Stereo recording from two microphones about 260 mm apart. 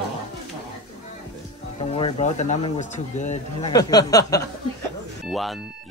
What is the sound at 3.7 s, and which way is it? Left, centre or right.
Speech, centre.